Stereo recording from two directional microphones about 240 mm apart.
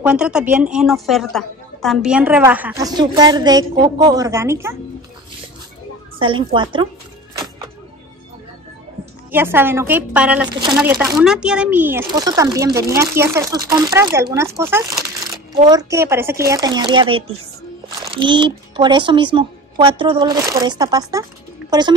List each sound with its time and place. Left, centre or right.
0.0 s a woman's voice: centre
6.1 s a woman's voice: right
9.3 s a woman's voice: centre